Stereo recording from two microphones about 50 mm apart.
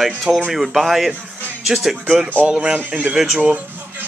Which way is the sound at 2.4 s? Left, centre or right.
Right.